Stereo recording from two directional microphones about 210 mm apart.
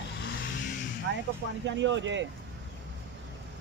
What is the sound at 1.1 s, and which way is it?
Speech, 60° right (ahead or behind).